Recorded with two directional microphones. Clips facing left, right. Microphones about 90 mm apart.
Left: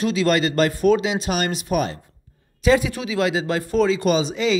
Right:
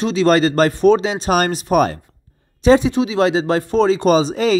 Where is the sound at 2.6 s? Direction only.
30° right (ahead or behind).